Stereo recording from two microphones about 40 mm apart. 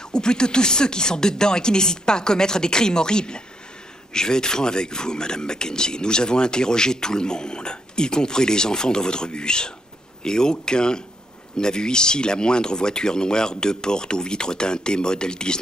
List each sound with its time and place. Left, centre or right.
0.1 s speech: centre